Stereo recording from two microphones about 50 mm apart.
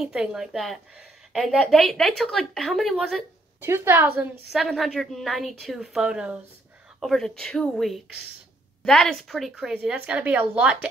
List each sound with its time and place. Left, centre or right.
1.3 s a woman's voice: centre
3.6 s a woman's voice: right
4.5 s a woman's voice: centre
5.8 s speech: centre
7.0 s a woman's voice: centre
9.4 s speech: centre
9.8 s speech: right